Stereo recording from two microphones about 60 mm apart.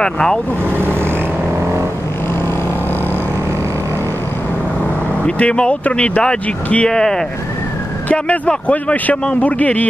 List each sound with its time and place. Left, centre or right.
0.0 s speech: centre
5.2 s speech: centre
8.1 s a man's voice: left